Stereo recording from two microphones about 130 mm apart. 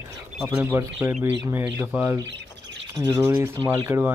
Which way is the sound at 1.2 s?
20° right (ahead or behind).